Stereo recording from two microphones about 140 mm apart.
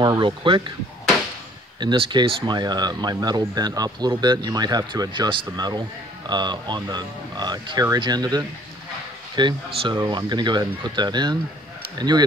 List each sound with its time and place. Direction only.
0.0 s speech: 35° right (ahead or behind)
1.8 s speech: 35° right (ahead or behind)